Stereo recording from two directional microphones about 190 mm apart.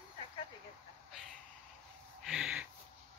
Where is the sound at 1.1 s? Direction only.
Centre (ahead or behind).